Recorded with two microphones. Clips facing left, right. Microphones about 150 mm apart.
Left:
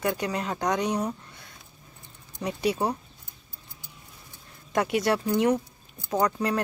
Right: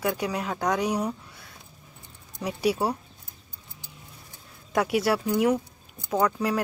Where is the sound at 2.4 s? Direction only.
5° right (ahead or behind).